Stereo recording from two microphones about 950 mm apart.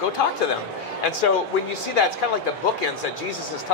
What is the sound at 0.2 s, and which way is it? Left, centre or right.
Speech, left.